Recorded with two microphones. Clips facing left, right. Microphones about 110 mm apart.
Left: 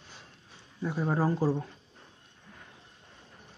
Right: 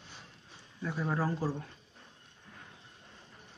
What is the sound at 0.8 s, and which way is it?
Speech, 25° left (ahead or behind).